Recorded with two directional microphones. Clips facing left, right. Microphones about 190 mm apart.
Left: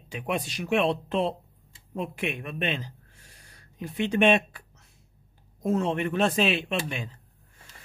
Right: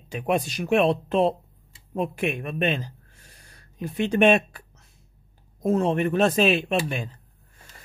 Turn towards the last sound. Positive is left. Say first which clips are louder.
# right 5 dB
turn(degrees=-40)  # may be behind; listen again after turning